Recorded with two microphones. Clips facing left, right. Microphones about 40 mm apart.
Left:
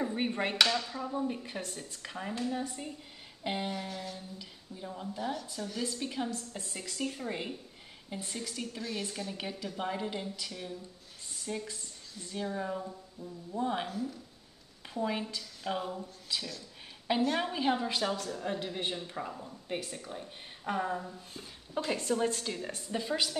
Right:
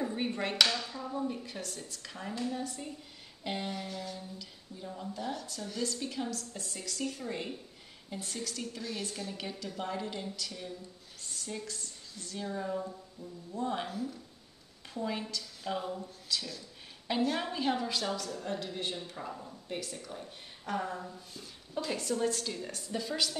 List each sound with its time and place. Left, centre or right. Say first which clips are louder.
0.0 s a woman's voice: left 2 dB; left
13.8 s speech: left 1 dB; centre
15.0 s a woman's voice: left 2 dB; centre